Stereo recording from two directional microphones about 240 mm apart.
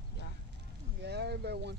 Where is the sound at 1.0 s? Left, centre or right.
Right.